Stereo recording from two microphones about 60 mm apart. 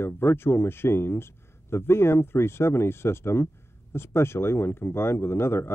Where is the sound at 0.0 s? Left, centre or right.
Left.